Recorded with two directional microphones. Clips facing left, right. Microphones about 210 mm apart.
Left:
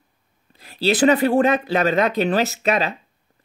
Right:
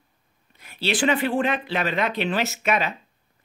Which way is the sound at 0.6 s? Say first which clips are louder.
Left 6 dB; 35° left (ahead or behind).